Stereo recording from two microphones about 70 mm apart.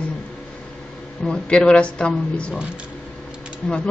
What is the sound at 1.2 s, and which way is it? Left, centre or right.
Speech, centre.